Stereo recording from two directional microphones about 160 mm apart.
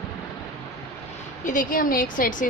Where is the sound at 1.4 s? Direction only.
55° left (ahead or behind).